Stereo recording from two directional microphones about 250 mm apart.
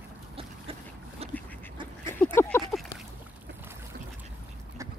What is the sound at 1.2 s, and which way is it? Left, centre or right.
Duck, right.